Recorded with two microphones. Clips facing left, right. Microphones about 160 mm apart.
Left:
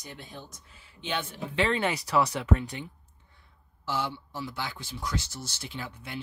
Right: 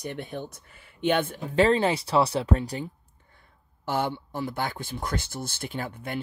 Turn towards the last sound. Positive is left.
turn(degrees=-50)  # may be behind; listen again after turning